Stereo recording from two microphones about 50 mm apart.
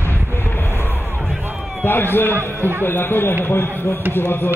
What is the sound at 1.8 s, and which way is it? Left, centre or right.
Speech, left.